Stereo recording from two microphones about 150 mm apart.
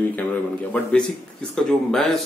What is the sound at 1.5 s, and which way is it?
Speech, 5° left (ahead or behind).